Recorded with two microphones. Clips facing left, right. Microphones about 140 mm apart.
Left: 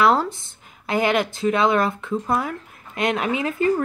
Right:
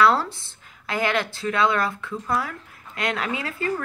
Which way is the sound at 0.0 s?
15° left (ahead or behind).